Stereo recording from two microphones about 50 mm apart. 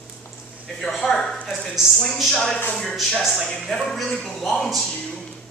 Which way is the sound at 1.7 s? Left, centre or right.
Centre.